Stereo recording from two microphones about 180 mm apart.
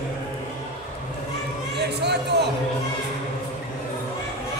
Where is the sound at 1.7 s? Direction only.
70° right (ahead or behind).